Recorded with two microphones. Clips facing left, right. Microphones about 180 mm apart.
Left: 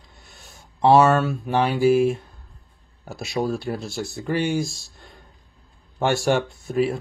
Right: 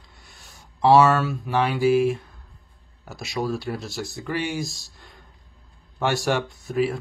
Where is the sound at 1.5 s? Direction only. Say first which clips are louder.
Left 2 dB; 30° left (ahead or behind).